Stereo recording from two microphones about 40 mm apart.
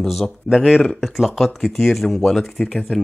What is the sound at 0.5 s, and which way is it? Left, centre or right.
Speech, centre.